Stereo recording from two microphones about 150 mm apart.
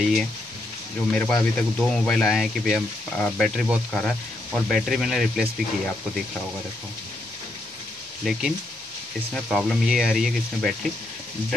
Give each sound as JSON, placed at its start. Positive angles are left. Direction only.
{"t": 0.0, "sound": "speech", "side_deg": 0}
{"t": 8.3, "sound": "speech", "side_deg": 0}